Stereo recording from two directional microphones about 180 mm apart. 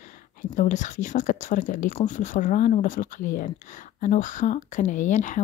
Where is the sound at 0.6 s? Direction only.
45° left (ahead or behind).